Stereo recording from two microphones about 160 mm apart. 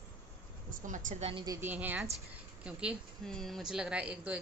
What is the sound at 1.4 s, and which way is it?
A woman's voice, 20° right (ahead or behind).